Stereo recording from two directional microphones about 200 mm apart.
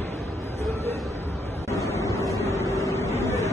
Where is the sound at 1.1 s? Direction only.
10° left (ahead or behind).